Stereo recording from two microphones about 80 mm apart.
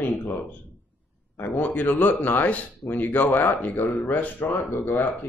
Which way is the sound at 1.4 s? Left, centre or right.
Left.